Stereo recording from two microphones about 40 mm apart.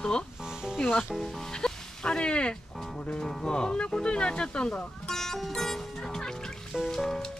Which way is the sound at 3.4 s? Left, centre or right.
Left.